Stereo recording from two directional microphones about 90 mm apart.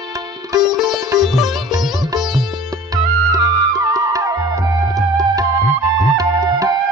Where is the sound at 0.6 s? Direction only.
5° right (ahead or behind).